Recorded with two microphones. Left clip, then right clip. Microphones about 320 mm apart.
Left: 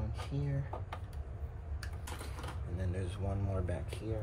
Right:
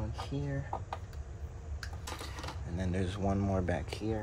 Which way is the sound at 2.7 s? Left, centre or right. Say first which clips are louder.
Right 7 dB; right.